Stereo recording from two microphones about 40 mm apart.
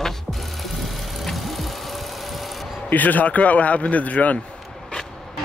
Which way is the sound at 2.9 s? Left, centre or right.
Left.